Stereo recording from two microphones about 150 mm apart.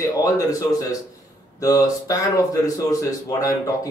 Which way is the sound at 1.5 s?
25° left (ahead or behind).